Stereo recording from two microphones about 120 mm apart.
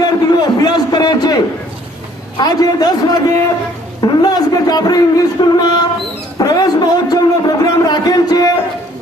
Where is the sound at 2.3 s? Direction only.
35° left (ahead or behind).